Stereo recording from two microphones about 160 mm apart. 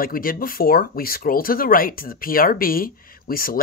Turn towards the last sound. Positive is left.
turn(degrees=65)  # may be behind; listen again after turning